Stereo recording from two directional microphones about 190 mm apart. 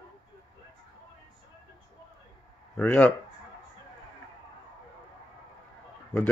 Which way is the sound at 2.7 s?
5° left (ahead or behind).